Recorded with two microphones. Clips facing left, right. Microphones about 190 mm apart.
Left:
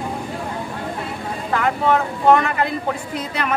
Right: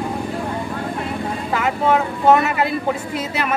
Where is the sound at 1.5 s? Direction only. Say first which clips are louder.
Even; 5° right (ahead or behind).